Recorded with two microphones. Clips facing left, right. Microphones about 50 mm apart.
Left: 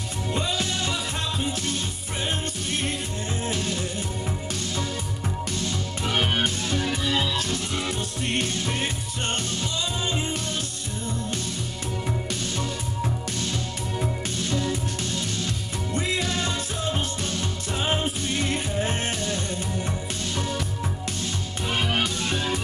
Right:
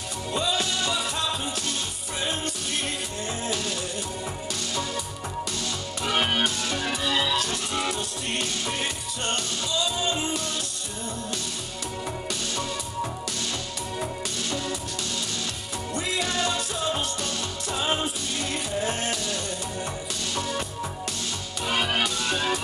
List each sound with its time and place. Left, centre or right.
0.6 s music: left
2.4 s music: left
5.6 s music: left
7.1 s music: right
8.7 s music: left
14.6 s music: left
21.6 s music: left
22.3 s music: right